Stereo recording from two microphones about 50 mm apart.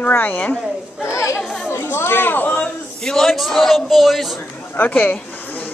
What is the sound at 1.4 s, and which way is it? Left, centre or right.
Chatter, centre.